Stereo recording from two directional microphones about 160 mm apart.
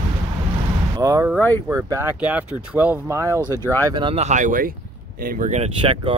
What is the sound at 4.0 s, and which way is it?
Speech, 30° right (ahead or behind).